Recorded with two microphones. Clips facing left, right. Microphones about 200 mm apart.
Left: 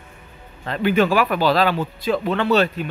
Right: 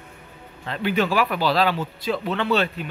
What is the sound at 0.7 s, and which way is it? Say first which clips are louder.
Speech: left 5 dB; 50° left (ahead or behind).